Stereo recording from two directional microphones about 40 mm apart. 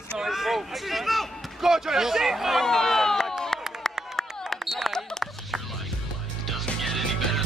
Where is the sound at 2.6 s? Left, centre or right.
Centre.